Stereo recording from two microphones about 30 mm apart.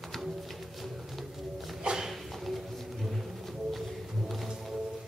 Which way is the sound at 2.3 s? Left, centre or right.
Centre.